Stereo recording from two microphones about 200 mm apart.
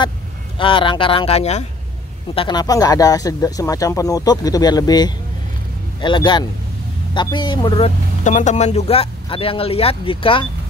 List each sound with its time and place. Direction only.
0.6 s speech: 25° left (ahead or behind)
8.2 s speech: 35° left (ahead or behind)